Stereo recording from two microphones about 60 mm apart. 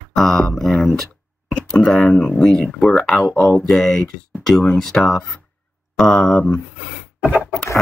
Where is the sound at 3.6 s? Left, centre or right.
Centre.